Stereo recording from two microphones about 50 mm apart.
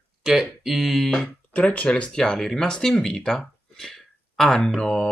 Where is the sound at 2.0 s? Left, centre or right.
Centre.